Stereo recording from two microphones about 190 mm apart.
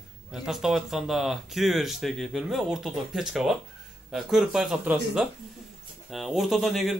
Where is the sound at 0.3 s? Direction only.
Centre (ahead or behind).